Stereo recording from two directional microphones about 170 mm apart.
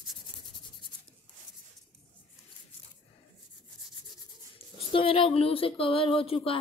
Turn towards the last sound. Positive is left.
turn(degrees=35)  # may be behind; listen again after turning